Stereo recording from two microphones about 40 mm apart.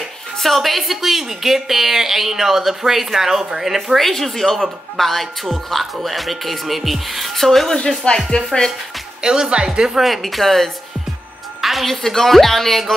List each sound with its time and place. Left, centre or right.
0.4 s a woman's voice: centre
9.2 s a woman's voice: centre
10.0 s a woman's voice: centre